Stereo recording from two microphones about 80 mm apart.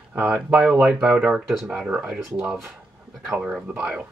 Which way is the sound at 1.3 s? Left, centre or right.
Centre.